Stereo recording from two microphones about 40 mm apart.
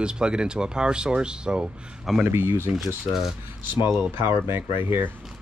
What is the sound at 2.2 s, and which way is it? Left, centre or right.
Speech, right.